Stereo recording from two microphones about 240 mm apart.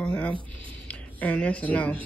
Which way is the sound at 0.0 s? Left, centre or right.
Centre.